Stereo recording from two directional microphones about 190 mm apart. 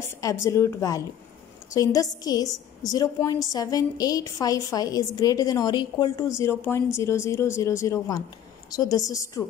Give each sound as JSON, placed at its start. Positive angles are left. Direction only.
{"t": 0.2, "sound": "a woman's voice", "side_deg": 15}